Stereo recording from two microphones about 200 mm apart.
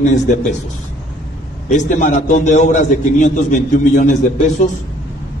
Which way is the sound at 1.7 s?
40° left (ahead or behind).